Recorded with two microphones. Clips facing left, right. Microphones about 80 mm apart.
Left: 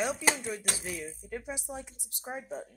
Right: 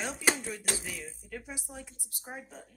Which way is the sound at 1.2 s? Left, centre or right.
Left.